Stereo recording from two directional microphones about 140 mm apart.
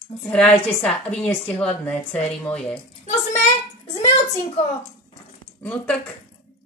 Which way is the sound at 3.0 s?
55° left (ahead or behind).